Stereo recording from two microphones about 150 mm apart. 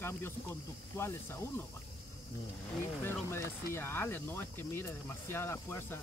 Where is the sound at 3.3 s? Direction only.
15° left (ahead or behind).